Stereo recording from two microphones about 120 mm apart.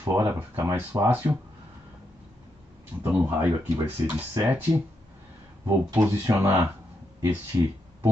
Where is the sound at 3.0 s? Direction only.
15° right (ahead or behind).